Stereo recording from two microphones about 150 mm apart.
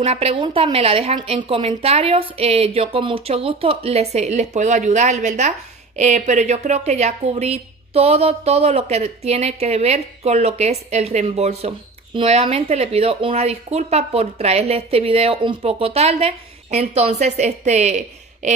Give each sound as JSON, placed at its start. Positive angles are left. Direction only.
{"t": 0.0, "sound": "a woman's voice", "side_deg": -40}